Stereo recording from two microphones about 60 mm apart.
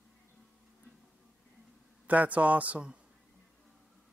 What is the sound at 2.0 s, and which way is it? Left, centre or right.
Speech, right.